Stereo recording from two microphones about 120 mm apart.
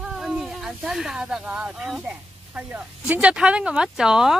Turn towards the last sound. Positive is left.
turn(degrees=-5)  # may be behind; listen again after turning